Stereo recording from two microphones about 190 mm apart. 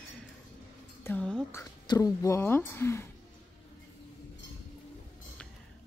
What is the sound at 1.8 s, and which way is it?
Speech, 20° left (ahead or behind).